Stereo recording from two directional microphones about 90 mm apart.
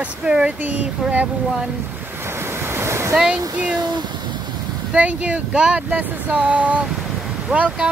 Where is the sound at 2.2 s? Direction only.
25° right (ahead or behind).